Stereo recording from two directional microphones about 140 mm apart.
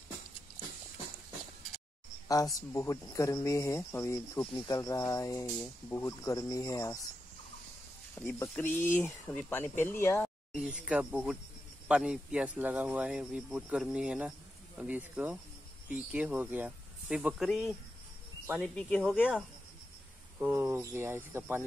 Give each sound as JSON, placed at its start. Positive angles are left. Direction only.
{"t": 2.2, "sound": "speech", "side_deg": 25}
{"t": 8.1, "sound": "speech", "side_deg": 15}
{"t": 10.5, "sound": "speech", "side_deg": -10}
{"t": 19.0, "sound": "speech", "side_deg": -5}